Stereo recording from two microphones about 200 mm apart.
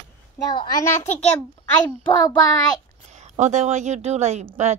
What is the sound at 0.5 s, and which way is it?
Speech, 20° left (ahead or behind).